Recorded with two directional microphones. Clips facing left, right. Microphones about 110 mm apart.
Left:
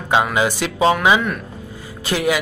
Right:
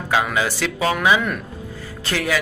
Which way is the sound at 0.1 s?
25° left (ahead or behind).